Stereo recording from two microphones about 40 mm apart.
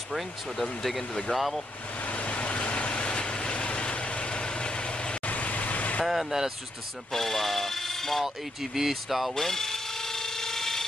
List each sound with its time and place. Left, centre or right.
0.1 s speech: centre
2.0 s vehicle: left
5.2 s vehicle: left
6.0 s speech: centre
7.1 s a sound: centre
8.7 s speech: centre
9.3 s drill: centre